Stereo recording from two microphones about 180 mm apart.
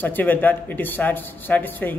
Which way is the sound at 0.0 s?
10° left (ahead or behind).